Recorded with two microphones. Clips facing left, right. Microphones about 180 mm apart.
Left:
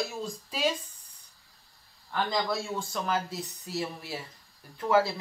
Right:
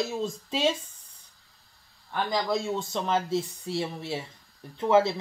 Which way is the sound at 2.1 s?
20° right (ahead or behind).